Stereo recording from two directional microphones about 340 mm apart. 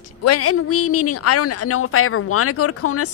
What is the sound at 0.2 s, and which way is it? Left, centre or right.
A woman's voice, left.